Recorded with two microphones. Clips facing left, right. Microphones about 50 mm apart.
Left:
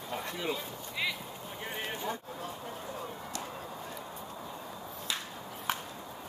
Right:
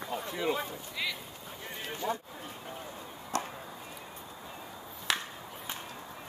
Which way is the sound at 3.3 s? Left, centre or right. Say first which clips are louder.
Right 10 dB; right.